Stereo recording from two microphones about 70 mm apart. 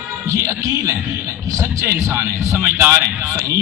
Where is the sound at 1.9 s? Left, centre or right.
Right.